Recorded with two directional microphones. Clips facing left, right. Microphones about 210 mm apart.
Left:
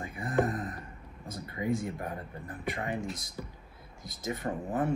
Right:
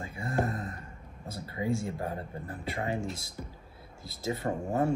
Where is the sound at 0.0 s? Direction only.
25° right (ahead or behind).